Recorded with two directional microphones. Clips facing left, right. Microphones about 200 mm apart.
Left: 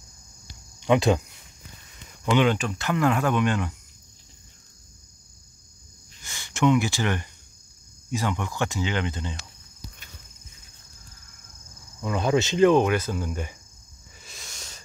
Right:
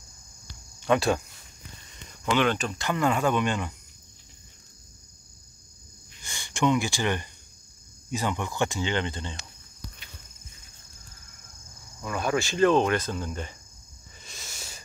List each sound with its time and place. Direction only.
0.7 s speech: 15° left (ahead or behind)
2.2 s speech: 15° left (ahead or behind)
6.2 s speech: centre (ahead or behind)
12.0 s cricket: 20° left (ahead or behind)
14.2 s a sound: centre (ahead or behind)